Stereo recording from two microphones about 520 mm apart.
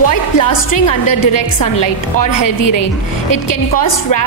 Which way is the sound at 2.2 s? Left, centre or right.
Left.